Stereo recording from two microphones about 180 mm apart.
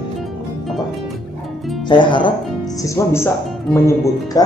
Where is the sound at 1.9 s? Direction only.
25° left (ahead or behind).